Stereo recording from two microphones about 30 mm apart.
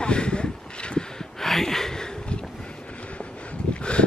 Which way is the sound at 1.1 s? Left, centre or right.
Centre.